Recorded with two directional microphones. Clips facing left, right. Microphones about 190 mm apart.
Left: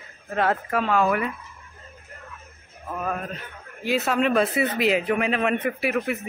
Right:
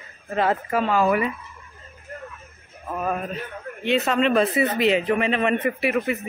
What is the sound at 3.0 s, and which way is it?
Speech, 10° right (ahead or behind).